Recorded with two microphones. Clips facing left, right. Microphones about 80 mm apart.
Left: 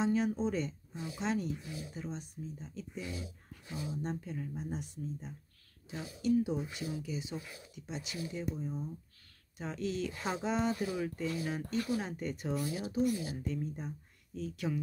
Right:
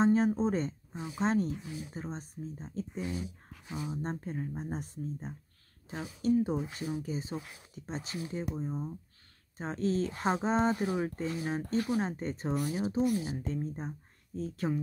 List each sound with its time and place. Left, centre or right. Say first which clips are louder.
0.0 s speech: right 5 dB; right
12.5 s speech: right 3 dB; right